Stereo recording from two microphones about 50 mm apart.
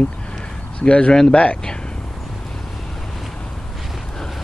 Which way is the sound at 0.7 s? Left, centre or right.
Left.